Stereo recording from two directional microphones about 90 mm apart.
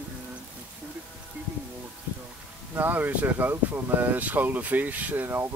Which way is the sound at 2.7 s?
20° right (ahead or behind).